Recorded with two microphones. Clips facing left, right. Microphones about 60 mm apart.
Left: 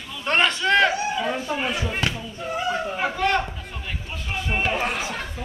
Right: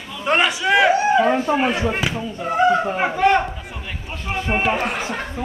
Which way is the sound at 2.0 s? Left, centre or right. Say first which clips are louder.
Right 2 dB; centre.